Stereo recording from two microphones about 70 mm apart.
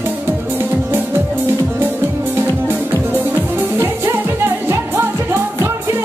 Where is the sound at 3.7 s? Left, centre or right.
Right.